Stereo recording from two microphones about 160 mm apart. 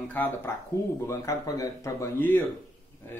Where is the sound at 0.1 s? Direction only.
10° left (ahead or behind).